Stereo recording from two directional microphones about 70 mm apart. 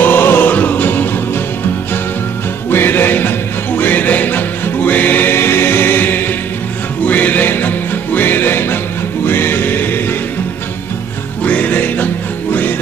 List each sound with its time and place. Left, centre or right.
0.0 s music: left
2.7 s music: left
11.4 s music: left